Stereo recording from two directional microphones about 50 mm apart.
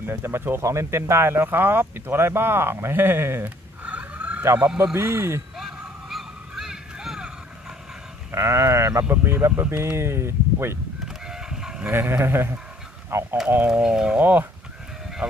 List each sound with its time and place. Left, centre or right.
0.0 s speech: right
3.4 s fowl: right
4.9 s speech: right
5.6 s a sound: centre
8.3 s speech: right
11.1 s chicken: centre
11.9 s speech: right
13.8 s speech: centre
14.2 s speech: right